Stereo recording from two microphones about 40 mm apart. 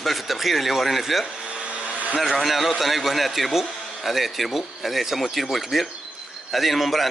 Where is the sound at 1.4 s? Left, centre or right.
Right.